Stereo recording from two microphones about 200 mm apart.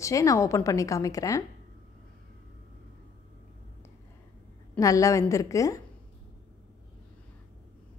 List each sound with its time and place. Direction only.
0.0 s a woman's voice: 15° left (ahead or behind)
4.7 s a woman's voice: 15° left (ahead or behind)